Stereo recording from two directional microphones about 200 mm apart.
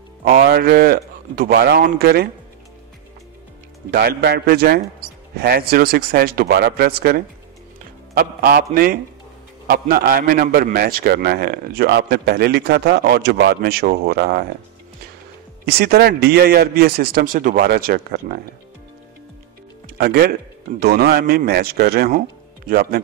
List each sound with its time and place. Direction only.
0.2 s a man's voice: 50° right (ahead or behind)
3.9 s a man's voice: 50° right (ahead or behind)
15.6 s a man's voice: 55° right (ahead or behind)
20.0 s a man's voice: 50° right (ahead or behind)